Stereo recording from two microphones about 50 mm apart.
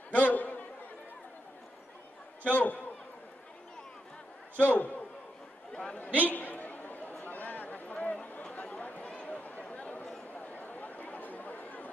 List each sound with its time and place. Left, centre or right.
0.1 s a sound: left
2.4 s a man's voice: left
4.6 s a man's voice: left
6.0 s a man's voice: right
6.3 s a sound: left
10.3 s chatter: left